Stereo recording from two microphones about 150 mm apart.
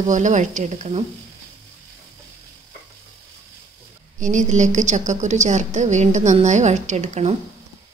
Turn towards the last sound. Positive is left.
turn(degrees=-50)  # may be behind; listen again after turning